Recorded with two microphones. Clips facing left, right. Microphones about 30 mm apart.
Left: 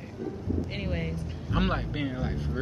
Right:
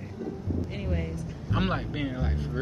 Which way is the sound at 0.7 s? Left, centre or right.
Left.